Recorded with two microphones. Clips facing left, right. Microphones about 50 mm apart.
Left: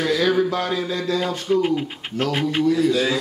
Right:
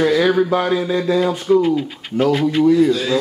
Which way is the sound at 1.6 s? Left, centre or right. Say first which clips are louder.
Right 4 dB; left.